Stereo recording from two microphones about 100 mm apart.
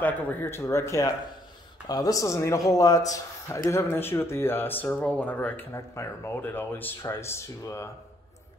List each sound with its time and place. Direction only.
0.0 s a man's voice: 20° left (ahead or behind)